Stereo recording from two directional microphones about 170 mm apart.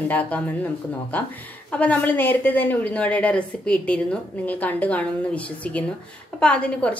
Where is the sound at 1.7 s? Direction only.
10° left (ahead or behind).